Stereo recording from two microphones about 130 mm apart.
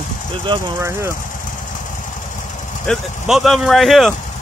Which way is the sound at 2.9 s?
5° left (ahead or behind).